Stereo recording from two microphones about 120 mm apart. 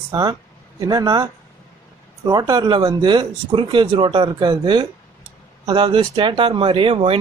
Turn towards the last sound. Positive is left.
turn(degrees=-50)  # may be behind; listen again after turning